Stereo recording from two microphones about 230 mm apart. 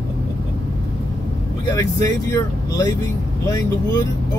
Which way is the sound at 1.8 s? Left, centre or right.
Centre.